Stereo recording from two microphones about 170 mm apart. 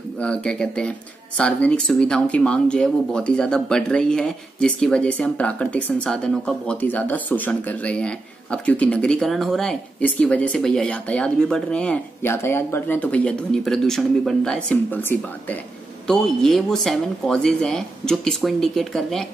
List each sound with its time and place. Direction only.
0.2 s speech: 5° left (ahead or behind)